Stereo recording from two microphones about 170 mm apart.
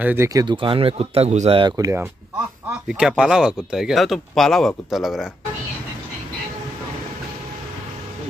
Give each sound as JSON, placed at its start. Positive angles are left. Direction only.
{"t": 0.0, "sound": "speech", "side_deg": -15}
{"t": 2.9, "sound": "speech", "side_deg": -5}